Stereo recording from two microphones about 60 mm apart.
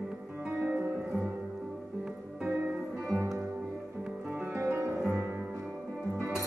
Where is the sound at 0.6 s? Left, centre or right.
Right.